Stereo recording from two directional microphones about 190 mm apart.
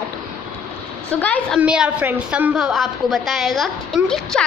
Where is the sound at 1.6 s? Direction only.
5° right (ahead or behind).